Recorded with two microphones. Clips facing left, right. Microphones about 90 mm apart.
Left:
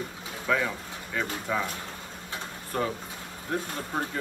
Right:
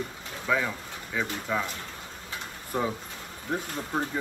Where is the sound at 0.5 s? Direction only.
Centre (ahead or behind).